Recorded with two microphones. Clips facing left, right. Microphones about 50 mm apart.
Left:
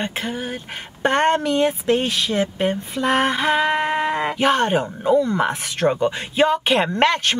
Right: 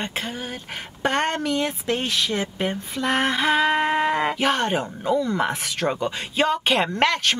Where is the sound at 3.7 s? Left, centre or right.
Centre.